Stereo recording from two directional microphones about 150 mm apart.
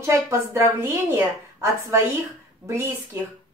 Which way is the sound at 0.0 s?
15° right (ahead or behind).